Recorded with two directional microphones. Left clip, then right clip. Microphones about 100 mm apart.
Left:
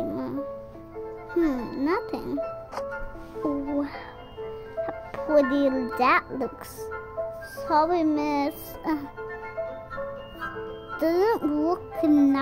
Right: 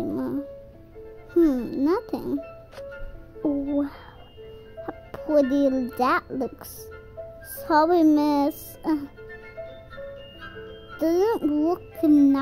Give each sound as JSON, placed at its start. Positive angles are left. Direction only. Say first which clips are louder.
{"t": 0.0, "sound": "music", "louder": "right 2 dB", "side_deg": -25}
{"t": 1.7, "sound": "speech", "louder": "right 2 dB", "side_deg": -20}
{"t": 2.7, "sound": "music", "louder": "left 6 dB", "side_deg": -10}
{"t": 3.4, "sound": "a child's voice", "louder": "right 3 dB", "side_deg": -15}
{"t": 4.4, "sound": "music", "louder": "left 9 dB", "side_deg": -15}
{"t": 5.8, "sound": "a child's voice", "louder": "left 1 dB", "side_deg": -20}
{"t": 7.5, "sound": "a child's voice", "louder": "right 3 dB", "side_deg": -30}
{"t": 8.8, "sound": "music", "louder": "right 2 dB", "side_deg": -15}
{"t": 11.0, "sound": "a child's voice", "louder": "right 1 dB", "side_deg": -5}